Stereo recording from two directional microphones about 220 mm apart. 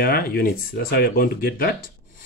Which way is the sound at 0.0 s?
40° left (ahead or behind).